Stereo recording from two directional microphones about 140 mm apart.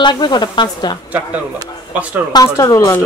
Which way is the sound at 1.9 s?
10° right (ahead or behind).